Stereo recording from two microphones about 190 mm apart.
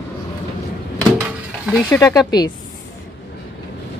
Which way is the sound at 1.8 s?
15° left (ahead or behind).